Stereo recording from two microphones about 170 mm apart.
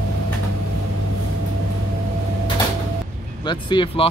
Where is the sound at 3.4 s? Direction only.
30° left (ahead or behind).